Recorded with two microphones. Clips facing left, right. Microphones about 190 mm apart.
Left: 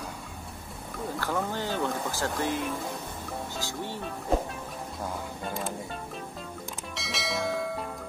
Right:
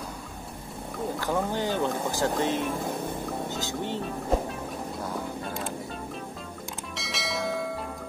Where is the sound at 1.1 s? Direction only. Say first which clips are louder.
Right 2 dB; 15° right (ahead or behind).